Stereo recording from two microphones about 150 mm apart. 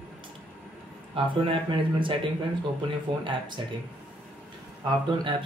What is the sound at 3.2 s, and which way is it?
Speech, 30° right (ahead or behind).